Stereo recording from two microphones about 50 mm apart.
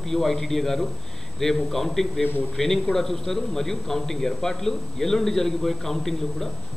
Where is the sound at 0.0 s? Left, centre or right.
Centre.